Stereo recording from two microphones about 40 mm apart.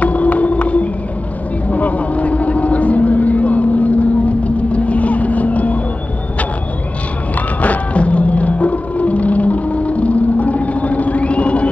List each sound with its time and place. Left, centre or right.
0.0 s a sound: left
1.7 s vehicle: left
7.6 s music: left